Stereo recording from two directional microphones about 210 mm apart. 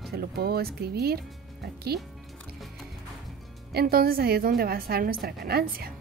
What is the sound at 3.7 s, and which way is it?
A woman's voice, 45° right (ahead or behind).